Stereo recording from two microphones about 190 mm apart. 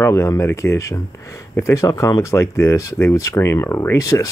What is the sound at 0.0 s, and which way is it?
Speech, 15° left (ahead or behind).